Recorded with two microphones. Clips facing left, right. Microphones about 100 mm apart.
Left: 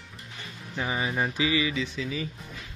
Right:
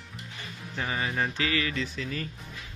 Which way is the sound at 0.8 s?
15° left (ahead or behind).